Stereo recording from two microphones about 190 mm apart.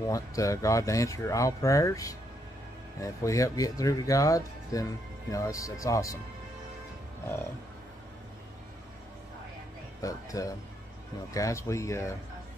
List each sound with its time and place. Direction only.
0.1 s speech: 15° left (ahead or behind)
10.0 s speech: 15° left (ahead or behind)